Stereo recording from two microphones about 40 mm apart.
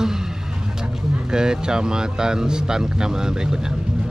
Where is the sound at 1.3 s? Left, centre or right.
Centre.